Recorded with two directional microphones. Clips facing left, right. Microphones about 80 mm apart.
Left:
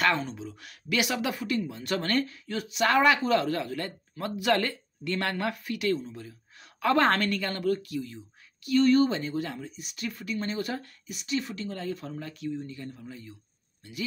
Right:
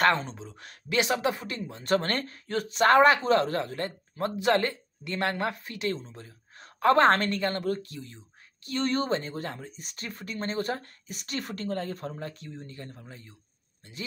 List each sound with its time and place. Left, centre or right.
0.0 s speech: right